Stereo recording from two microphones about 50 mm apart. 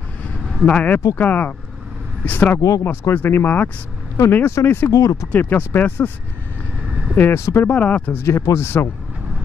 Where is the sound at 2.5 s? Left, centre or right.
Left.